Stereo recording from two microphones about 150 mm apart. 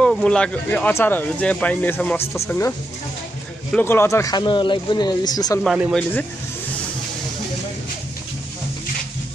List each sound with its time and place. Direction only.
0.0 s speech: 5° left (ahead or behind)
3.7 s speech: 15° left (ahead or behind)
5.6 s speech: 5° right (ahead or behind)